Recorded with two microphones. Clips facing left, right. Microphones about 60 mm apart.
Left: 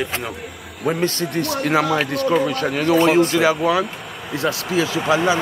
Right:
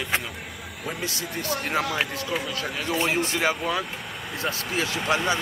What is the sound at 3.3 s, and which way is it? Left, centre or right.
Speech, left.